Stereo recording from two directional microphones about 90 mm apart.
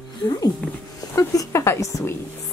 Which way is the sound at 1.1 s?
35° left (ahead or behind).